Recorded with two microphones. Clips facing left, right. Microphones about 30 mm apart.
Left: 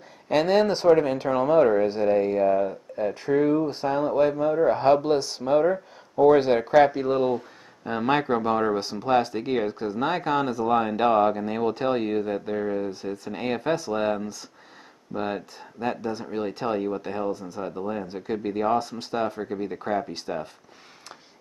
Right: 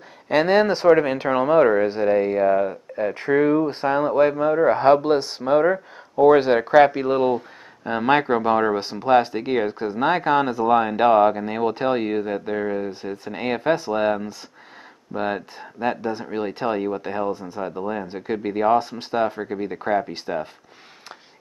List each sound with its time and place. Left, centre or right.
0.3 s speech: centre
1.1 s speech: right